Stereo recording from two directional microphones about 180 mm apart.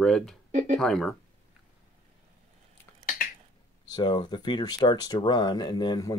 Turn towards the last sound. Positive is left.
turn(degrees=20)  # may be behind; listen again after turning